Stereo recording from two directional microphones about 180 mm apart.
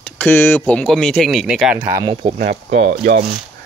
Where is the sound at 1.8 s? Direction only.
20° right (ahead or behind).